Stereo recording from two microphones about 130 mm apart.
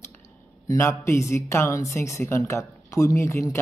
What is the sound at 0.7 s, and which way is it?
Speech, 20° left (ahead or behind).